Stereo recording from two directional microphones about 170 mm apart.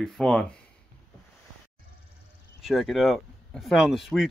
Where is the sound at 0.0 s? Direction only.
Centre (ahead or behind).